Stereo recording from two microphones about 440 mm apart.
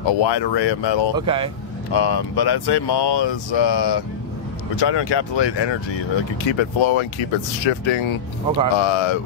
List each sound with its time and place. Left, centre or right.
0.0 s speech: left
1.1 s speech: centre
1.9 s speech: left